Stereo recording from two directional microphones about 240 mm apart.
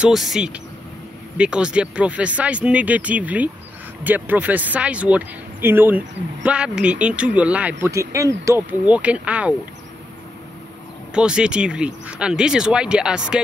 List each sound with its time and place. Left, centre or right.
0.0 s speech: centre
11.1 s speech: centre